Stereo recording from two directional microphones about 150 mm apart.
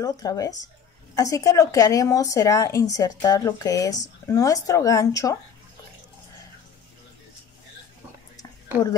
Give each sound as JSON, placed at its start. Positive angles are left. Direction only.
{"t": 0.0, "sound": "speech", "side_deg": 25}